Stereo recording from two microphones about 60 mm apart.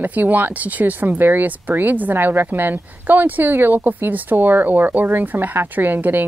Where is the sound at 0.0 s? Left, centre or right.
Right.